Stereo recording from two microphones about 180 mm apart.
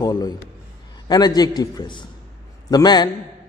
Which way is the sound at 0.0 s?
20° left (ahead or behind).